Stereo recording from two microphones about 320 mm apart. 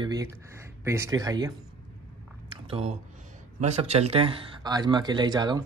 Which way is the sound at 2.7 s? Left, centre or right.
Centre.